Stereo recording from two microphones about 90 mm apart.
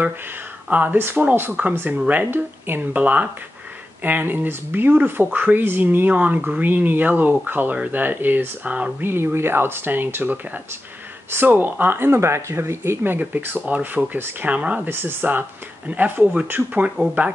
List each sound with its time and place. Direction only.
0.7 s speech: 20° right (ahead or behind)
9.1 s speech: 25° right (ahead or behind)